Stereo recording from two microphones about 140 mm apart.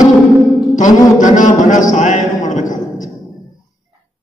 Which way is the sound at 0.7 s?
65° left (ahead or behind).